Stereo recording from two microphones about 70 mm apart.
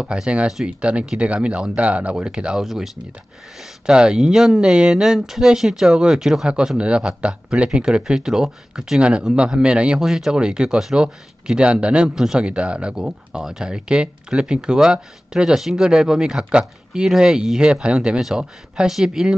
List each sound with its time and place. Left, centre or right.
0.0 s speech: centre